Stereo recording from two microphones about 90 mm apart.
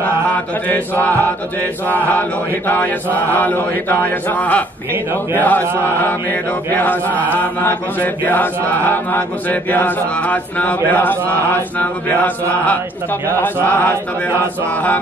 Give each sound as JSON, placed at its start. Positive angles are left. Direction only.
{"t": 0.7, "sound": "chant", "side_deg": 15}